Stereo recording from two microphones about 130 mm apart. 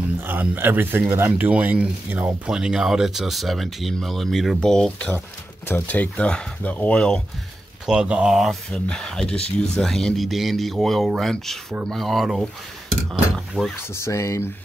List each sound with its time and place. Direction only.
0.2 s speech: 15° right (ahead or behind); by 7.2 s 10° left (ahead or behind)
7.8 s speech: 5° right (ahead or behind)
13.9 s speech: 20° left (ahead or behind)